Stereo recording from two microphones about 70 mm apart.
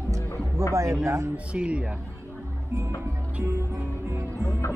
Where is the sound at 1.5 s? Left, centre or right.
Centre.